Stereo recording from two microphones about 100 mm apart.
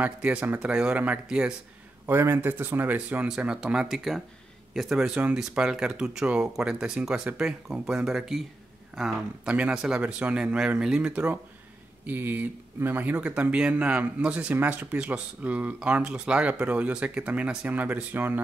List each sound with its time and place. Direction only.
0.0 s speech: 10° right (ahead or behind)
2.0 s speech: 25° right (ahead or behind)